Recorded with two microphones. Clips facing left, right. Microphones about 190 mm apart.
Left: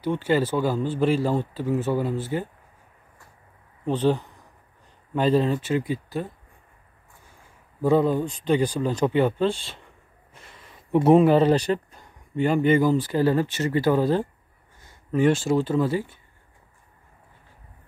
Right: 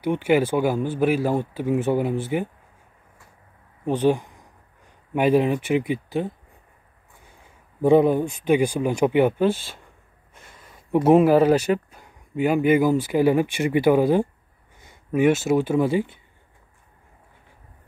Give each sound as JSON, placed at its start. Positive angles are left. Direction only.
{"t": 0.0, "sound": "speech", "side_deg": -15}
{"t": 3.8, "sound": "speech", "side_deg": -10}
{"t": 7.8, "sound": "speech", "side_deg": -15}
{"t": 11.1, "sound": "speech", "side_deg": -5}